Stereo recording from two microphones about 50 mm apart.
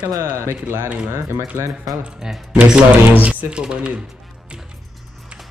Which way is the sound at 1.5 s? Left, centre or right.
Right.